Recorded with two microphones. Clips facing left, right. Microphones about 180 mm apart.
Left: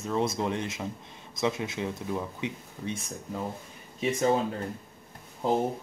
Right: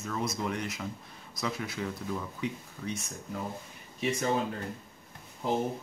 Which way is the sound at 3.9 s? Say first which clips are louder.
Left 4 dB; 30° left (ahead or behind).